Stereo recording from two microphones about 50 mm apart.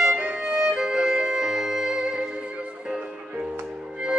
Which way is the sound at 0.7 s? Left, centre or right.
Centre.